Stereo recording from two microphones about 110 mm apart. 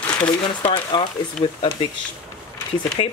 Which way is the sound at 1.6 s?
60° left (ahead or behind).